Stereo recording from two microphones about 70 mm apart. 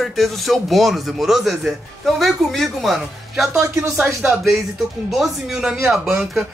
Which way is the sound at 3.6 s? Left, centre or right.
Right.